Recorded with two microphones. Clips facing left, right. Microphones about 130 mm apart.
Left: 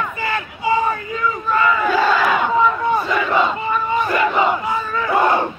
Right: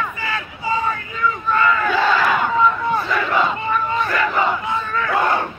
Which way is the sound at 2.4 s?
15° left (ahead or behind).